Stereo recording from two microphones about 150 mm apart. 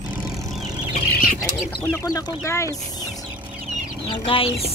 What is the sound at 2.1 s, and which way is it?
Speech, 20° left (ahead or behind).